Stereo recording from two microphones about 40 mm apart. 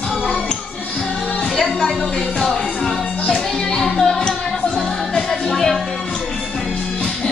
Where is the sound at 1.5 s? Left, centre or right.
Centre.